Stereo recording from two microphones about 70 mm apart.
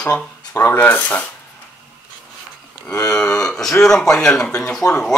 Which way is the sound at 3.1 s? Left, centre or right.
Centre.